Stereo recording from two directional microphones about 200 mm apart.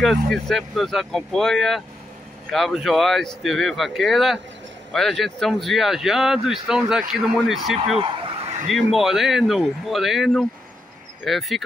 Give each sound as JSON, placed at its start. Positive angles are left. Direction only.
{"t": 0.0, "sound": "speech", "side_deg": 0}
{"t": 8.0, "sound": "a sound", "side_deg": -25}
{"t": 8.6, "sound": "speech", "side_deg": 0}